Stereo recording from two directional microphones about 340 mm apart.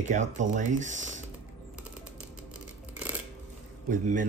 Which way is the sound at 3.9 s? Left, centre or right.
Right.